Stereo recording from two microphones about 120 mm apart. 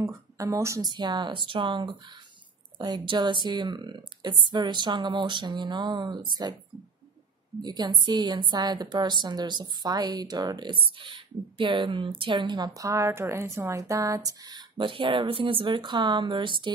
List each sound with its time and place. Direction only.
0.0 s speech: 30° right (ahead or behind)
0.8 s a woman's voice: 40° right (ahead or behind)
7.6 s a woman's voice: 35° right (ahead or behind)